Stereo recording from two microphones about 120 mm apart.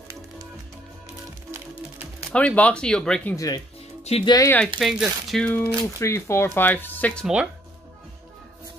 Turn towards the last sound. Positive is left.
turn(degrees=15)  # may be behind; listen again after turning